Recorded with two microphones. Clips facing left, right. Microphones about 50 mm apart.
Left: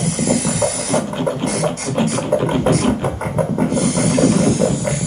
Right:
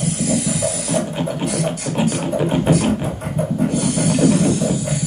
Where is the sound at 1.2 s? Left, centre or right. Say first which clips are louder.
Left 3 dB; left.